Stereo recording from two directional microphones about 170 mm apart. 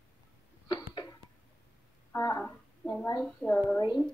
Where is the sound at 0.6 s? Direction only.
25° left (ahead or behind).